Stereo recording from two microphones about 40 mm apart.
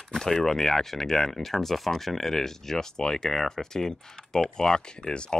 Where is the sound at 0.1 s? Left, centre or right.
Centre.